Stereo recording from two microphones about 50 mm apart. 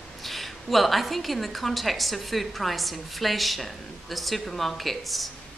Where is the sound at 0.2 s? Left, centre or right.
Centre.